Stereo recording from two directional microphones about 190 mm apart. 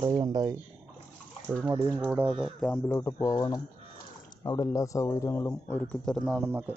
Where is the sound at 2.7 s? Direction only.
15° left (ahead or behind).